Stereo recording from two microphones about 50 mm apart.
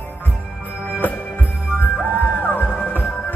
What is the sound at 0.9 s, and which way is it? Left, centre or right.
Music, left.